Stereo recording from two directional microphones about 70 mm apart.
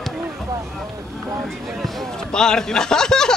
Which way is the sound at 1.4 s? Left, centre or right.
Centre.